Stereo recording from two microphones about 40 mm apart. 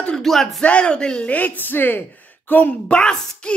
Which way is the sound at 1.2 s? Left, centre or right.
Left.